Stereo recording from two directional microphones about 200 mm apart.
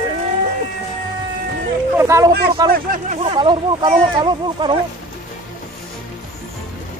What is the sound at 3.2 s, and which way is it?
Speech, 25° right (ahead or behind).